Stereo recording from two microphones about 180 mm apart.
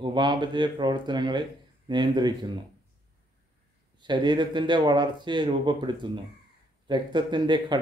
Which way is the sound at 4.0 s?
25° right (ahead or behind).